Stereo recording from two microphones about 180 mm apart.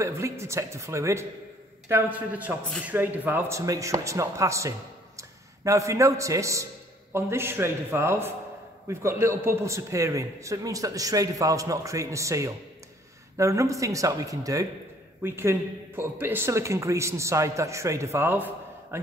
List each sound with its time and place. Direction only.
0.0 s speech: 15° right (ahead or behind)